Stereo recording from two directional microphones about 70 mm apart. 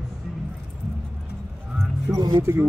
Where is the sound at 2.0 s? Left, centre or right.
Right.